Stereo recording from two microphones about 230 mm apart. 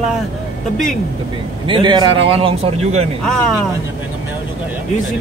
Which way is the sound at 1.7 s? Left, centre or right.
Centre.